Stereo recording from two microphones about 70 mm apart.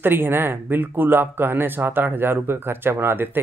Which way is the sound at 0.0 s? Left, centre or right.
Right.